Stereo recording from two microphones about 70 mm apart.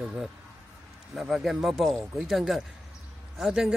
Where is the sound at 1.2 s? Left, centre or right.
Centre.